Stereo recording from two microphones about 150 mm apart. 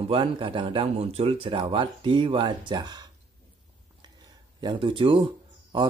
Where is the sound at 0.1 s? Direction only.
35° right (ahead or behind).